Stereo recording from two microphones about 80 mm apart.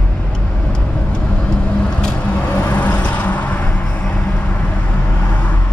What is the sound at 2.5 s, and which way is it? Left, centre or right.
Vehicle, centre.